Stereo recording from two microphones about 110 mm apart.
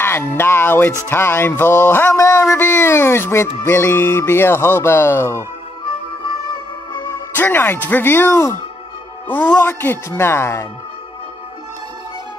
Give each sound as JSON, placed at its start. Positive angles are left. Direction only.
{"t": 0.0, "sound": "a sound", "side_deg": 20}
{"t": 0.4, "sound": "speech", "side_deg": 20}
{"t": 6.9, "sound": "speech", "side_deg": 25}
{"t": 9.3, "sound": "speech", "side_deg": 15}